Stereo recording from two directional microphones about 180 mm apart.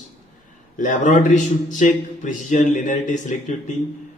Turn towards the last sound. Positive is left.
turn(degrees=45)  # may be behind; listen again after turning